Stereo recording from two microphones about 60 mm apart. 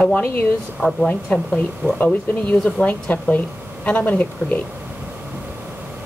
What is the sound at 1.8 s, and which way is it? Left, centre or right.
Speech, right.